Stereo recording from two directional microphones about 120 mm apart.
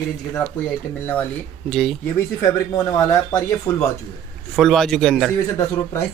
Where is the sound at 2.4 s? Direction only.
25° left (ahead or behind).